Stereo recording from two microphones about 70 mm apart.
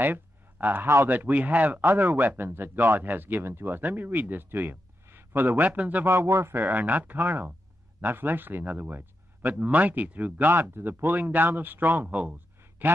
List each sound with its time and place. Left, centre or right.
0.0 s a sound: right
1.0 s speech: right
6.0 s speech: right
6.5 s speech: right